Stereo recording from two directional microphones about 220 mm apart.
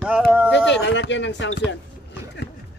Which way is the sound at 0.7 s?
55° left (ahead or behind).